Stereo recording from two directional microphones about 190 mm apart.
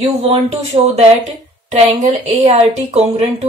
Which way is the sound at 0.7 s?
25° right (ahead or behind).